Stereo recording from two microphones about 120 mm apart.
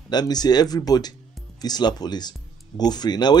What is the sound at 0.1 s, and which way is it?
A man's voice, 35° left (ahead or behind).